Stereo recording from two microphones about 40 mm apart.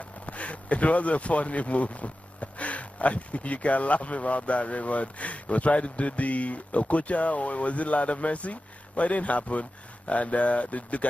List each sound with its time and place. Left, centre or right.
0.3 s speech: left